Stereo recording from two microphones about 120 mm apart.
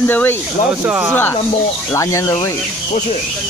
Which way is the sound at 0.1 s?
15° left (ahead or behind).